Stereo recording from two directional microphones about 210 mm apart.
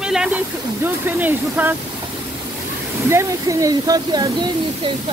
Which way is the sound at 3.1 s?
15° right (ahead or behind).